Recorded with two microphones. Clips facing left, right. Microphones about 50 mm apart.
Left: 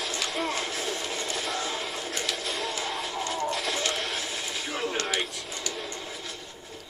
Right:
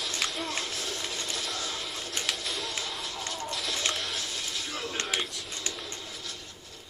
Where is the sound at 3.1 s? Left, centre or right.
Left.